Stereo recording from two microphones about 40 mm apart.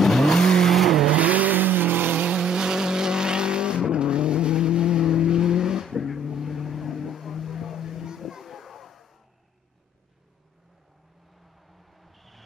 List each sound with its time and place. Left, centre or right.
0.0 s vehicle: centre
1.1 s vehicle: right
2.2 s vehicle: right
8.2 s a sound: centre
11.6 s vehicle: centre